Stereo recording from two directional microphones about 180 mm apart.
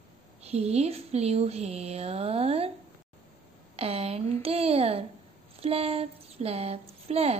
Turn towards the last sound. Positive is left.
turn(degrees=-35)  # may be behind; listen again after turning